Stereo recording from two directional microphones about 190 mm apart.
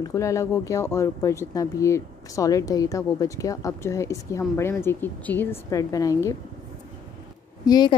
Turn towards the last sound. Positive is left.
turn(degrees=20)  # may be behind; listen again after turning